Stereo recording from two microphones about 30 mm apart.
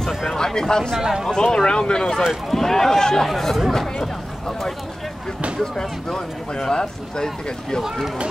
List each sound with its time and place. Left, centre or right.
0.6 s speech: centre
0.9 s speech: centre
1.3 s speech: left
2.5 s speech: centre
3.3 s speech: centre
5.6 s speech: left